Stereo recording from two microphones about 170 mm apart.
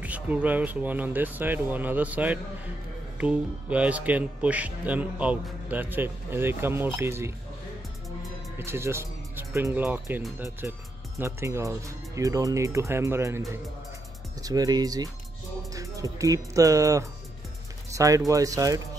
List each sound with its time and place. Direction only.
0.0 s speech: 10° right (ahead or behind)
8.5 s speech: 15° right (ahead or behind)
14.4 s speech: 20° right (ahead or behind)